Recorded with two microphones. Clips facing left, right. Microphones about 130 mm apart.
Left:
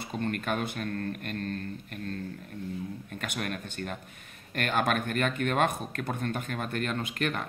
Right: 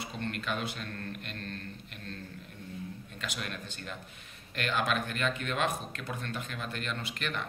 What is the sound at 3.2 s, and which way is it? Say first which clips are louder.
Speech: left 5 dB; 50° left (ahead or behind).